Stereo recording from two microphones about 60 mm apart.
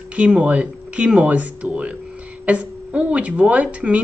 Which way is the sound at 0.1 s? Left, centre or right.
Right.